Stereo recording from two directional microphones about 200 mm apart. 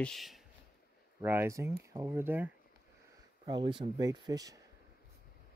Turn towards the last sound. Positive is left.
turn(degrees=-20)  # may be behind; listen again after turning